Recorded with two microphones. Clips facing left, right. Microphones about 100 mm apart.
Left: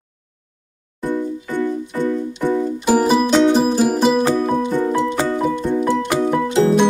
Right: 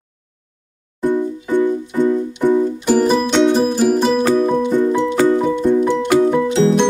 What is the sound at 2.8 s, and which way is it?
Music, 10° left (ahead or behind).